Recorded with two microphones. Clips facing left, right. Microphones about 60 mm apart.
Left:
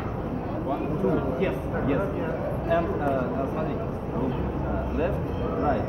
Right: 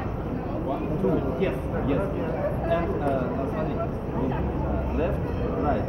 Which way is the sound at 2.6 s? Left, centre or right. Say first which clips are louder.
Left 2 dB; centre.